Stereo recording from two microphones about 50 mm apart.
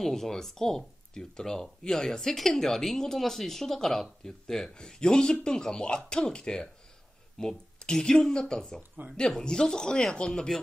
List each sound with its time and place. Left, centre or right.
0.0 s speech: centre